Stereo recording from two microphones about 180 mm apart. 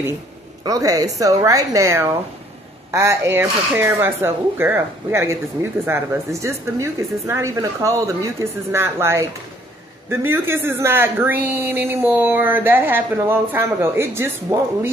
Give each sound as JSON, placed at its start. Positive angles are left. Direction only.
{"t": 0.7, "sound": "a woman's voice", "side_deg": -20}